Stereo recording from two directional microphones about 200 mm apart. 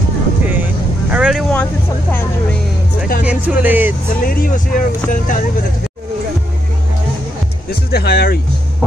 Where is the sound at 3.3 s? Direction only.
10° right (ahead or behind).